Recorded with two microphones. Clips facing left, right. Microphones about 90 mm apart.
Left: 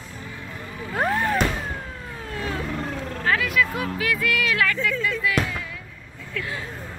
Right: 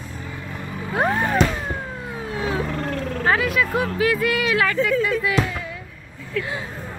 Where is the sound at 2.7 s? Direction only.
5° left (ahead or behind).